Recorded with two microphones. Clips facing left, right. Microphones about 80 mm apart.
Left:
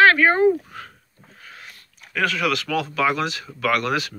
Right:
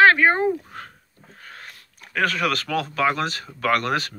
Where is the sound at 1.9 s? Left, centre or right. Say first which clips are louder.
Even; right.